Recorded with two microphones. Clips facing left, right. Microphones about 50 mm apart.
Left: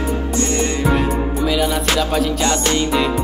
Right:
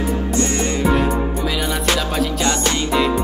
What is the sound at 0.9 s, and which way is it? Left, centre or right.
Music, centre.